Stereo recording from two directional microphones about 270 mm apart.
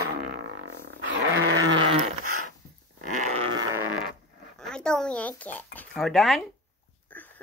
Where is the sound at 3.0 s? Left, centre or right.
Right.